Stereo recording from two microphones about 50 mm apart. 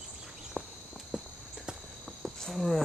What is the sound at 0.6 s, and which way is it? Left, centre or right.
Walk, right.